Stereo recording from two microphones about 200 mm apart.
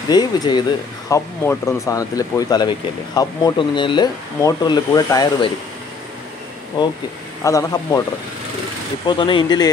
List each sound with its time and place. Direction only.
0.1 s speech: 20° left (ahead or behind)
7.4 s speech: 15° left (ahead or behind)
9.0 s speech: 25° left (ahead or behind)